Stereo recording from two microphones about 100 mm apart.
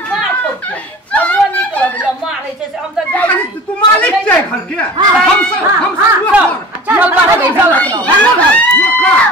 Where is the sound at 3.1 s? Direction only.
15° left (ahead or behind).